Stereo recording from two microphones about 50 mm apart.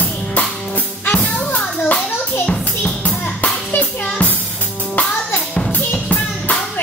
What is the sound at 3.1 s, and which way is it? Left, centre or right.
Music, left.